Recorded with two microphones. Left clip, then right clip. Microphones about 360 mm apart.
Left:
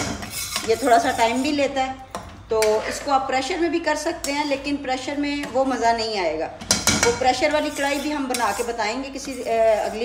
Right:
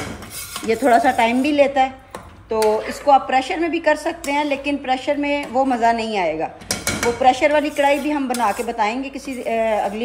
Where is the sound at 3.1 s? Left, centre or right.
Centre.